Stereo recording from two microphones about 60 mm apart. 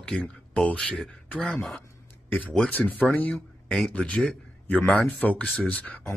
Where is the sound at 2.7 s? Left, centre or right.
Left.